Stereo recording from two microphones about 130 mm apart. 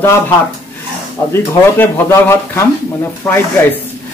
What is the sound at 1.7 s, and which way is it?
Speech, 15° left (ahead or behind).